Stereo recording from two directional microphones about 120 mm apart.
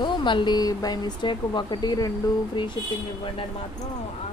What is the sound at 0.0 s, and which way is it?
Speech, 40° left (ahead or behind).